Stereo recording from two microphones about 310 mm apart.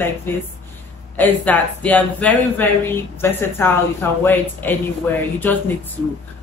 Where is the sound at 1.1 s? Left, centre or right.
Centre.